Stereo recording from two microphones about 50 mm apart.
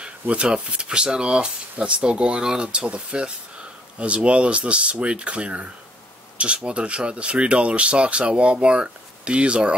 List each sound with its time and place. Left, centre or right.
0.0 s speech: right